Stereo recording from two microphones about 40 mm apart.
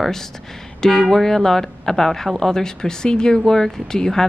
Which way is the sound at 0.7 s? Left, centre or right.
Centre.